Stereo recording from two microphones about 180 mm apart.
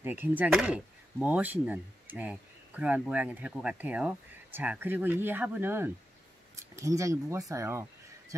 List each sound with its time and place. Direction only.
0.0 s speech: 10° right (ahead or behind)